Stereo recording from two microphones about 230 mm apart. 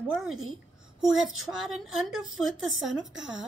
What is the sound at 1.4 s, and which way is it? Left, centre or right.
Speech, centre.